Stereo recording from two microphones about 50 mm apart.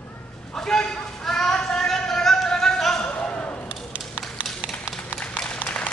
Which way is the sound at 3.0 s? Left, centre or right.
Left.